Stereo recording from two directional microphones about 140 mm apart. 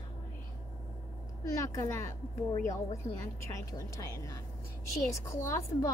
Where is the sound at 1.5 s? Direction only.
20° left (ahead or behind).